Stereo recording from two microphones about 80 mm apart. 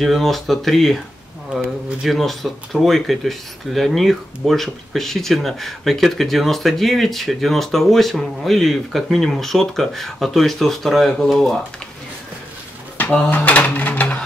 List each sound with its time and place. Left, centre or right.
0.0 s speech: centre
2.0 s speech: centre
13.3 s speech: left